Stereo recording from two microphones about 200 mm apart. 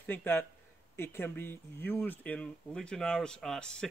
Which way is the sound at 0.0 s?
10° left (ahead or behind).